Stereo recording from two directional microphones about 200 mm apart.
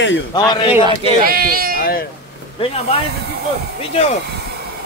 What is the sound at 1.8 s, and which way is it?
Speech, 50° left (ahead or behind).